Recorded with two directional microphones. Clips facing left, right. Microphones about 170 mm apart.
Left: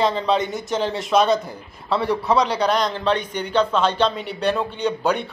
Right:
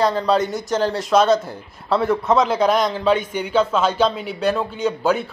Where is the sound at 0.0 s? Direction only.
Centre (ahead or behind).